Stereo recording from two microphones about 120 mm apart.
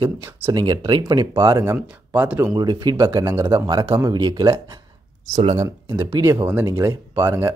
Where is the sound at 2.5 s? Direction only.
35° right (ahead or behind).